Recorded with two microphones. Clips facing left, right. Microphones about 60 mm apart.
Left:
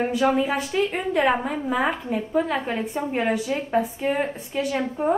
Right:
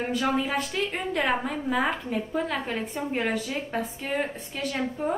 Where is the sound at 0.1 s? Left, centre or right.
Centre.